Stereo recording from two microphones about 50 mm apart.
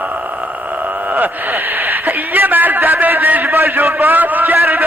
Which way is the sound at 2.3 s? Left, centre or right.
Right.